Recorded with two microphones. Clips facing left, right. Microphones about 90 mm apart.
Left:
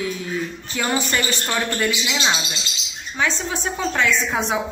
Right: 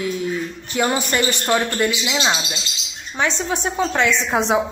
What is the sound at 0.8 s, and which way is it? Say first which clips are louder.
A woman's voice: right 3 dB; 15° right (ahead or behind).